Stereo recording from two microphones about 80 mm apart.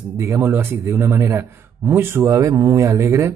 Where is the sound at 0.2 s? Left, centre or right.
Right.